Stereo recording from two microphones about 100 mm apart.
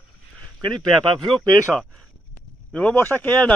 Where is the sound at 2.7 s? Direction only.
10° left (ahead or behind).